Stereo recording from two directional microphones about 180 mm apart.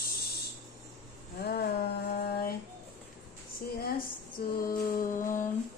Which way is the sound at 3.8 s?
55° left (ahead or behind).